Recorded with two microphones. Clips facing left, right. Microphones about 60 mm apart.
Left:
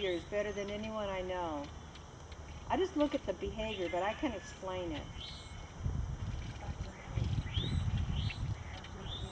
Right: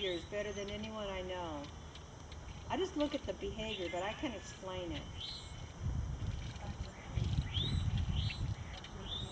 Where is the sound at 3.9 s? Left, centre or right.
Left.